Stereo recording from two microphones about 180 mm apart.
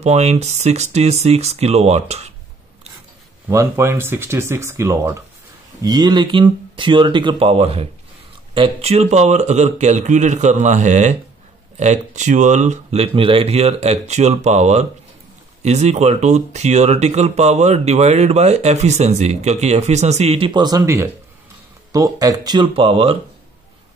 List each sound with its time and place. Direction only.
0.0 s speech: 35° right (ahead or behind)
3.4 s speech: 15° right (ahead or behind); by 23.1 s 30° right (ahead or behind)